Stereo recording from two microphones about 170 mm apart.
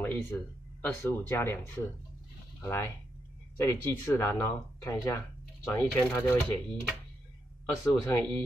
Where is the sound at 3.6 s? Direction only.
15° left (ahead or behind).